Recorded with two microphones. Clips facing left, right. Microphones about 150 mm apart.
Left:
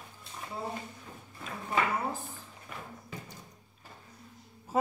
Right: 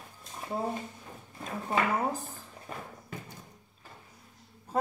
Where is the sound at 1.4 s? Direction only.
40° right (ahead or behind).